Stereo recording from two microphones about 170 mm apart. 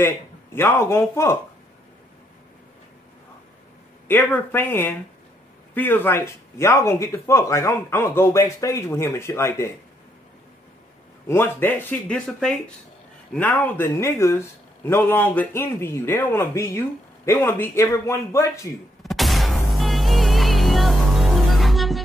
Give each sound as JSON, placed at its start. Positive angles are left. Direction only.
{"t": 0.0, "sound": "speech", "side_deg": 15}
{"t": 4.1, "sound": "speech", "side_deg": 10}
{"t": 11.2, "sound": "speech", "side_deg": 15}
{"t": 19.0, "sound": "music", "side_deg": 0}